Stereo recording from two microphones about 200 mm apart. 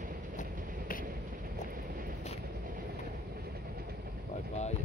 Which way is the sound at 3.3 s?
50° right (ahead or behind).